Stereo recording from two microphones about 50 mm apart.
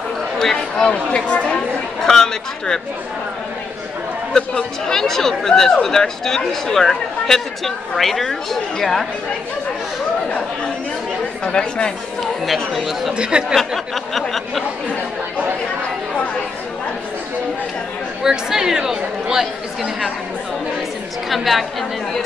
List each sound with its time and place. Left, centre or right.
0.4 s speech: centre
0.8 s speech: left
2.0 s speech: centre
4.3 s speech: centre
11.4 s speech: centre
12.7 s a sound: centre
13.1 s speech: right
13.6 s a sound: centre
18.2 s speech: centre
21.3 s a sound: centre